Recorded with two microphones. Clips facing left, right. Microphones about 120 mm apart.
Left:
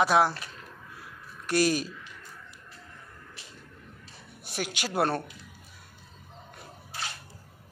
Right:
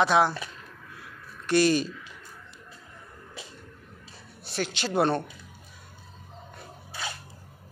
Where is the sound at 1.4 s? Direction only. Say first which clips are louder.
Right 3 dB; 5° left (ahead or behind).